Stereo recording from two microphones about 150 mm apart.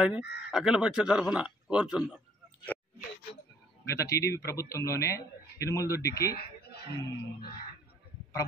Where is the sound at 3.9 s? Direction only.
20° left (ahead or behind).